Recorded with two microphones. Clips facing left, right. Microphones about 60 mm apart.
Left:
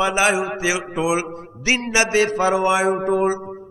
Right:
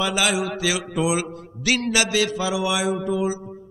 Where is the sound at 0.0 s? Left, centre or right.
Left.